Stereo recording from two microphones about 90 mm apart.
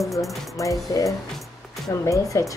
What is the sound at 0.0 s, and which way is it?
Speech, centre (ahead or behind).